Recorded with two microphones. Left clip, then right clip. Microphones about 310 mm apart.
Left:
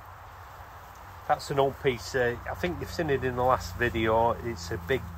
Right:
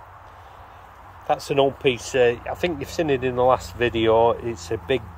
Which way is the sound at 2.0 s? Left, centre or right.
Centre.